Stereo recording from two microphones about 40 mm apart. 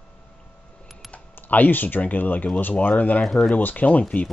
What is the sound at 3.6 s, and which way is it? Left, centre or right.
Speech, left.